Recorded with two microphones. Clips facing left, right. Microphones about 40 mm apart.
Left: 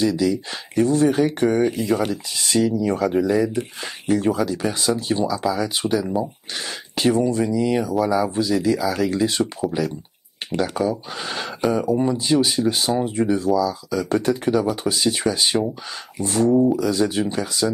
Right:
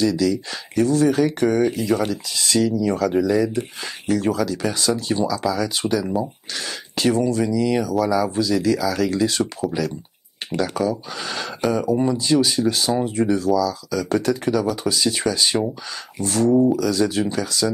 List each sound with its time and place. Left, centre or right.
0.0 s speech: centre
1.4 s speech: centre
11.6 s speech: centre
12.2 s speech: left